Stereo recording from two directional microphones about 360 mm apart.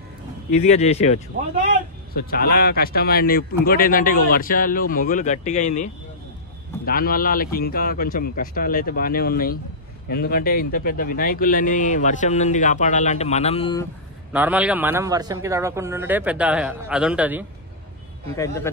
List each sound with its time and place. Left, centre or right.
0.5 s speech: centre
6.9 s speech: left
14.3 s speech: centre
18.3 s speech: centre